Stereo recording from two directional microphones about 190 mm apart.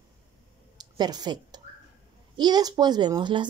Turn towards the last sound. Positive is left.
turn(degrees=-25)  # may be behind; listen again after turning